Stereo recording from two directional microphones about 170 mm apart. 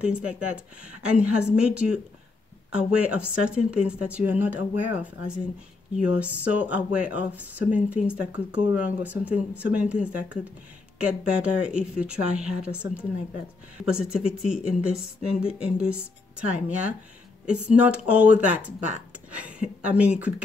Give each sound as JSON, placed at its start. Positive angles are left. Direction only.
{"t": 0.0, "sound": "speech", "side_deg": -5}
{"t": 5.9, "sound": "speech", "side_deg": -10}